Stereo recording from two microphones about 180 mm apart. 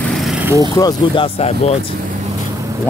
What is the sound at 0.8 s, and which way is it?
Speech, 20° left (ahead or behind).